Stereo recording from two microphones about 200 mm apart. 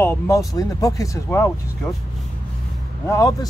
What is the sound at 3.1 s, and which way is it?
Speech, 15° left (ahead or behind).